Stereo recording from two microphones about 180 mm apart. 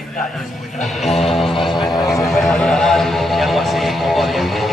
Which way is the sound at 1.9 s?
20° left (ahead or behind).